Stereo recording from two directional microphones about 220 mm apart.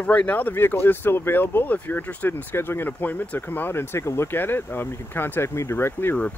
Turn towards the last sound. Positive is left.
turn(degrees=10)  # may be behind; listen again after turning